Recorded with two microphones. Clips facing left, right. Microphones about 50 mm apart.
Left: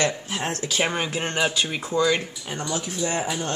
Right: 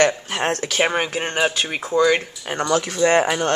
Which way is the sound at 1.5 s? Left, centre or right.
Right.